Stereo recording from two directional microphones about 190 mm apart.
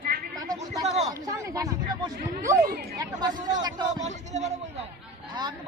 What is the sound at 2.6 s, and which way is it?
Chatter, 55° right (ahead or behind).